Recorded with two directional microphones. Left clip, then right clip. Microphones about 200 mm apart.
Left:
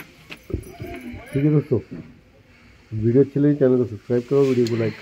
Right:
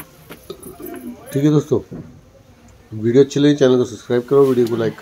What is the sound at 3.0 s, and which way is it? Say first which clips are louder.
Speech: right 5 dB; 5° right (ahead or behind).